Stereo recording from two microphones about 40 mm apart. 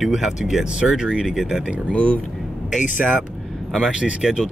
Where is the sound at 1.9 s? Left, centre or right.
Left.